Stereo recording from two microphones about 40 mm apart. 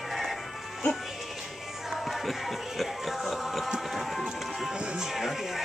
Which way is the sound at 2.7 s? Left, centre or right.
Centre.